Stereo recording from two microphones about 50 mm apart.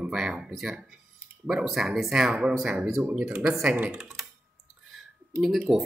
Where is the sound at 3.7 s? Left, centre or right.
Right.